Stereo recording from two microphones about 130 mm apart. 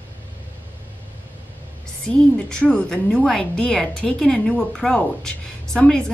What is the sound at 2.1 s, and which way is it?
A woman's voice, 10° left (ahead or behind).